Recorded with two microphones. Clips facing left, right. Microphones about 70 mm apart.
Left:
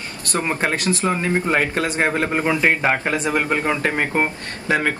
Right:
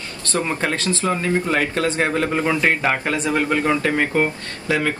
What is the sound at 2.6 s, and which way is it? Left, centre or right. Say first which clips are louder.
A man's voice: left 1 dB; centre.